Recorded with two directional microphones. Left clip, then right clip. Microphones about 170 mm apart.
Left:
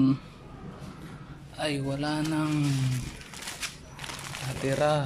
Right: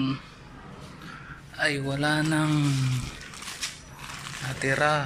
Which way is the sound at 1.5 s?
15° left (ahead or behind).